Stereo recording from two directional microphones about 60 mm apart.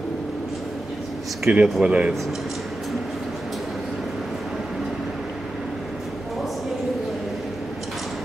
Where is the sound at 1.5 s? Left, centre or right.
Right.